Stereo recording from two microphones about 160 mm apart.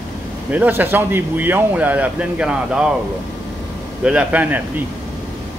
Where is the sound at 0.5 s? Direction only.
10° right (ahead or behind).